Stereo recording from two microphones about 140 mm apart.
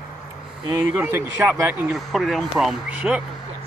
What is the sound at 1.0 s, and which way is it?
Speech, 15° right (ahead or behind).